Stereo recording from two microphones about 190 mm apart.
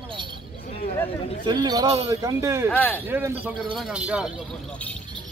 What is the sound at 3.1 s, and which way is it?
A man's voice, 10° right (ahead or behind).